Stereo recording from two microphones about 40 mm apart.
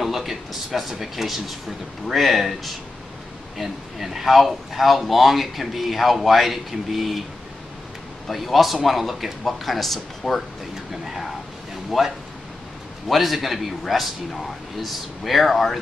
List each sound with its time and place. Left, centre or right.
0.0 s speech: centre
8.3 s speech: centre
10.9 s speech: centre
13.1 s speech: centre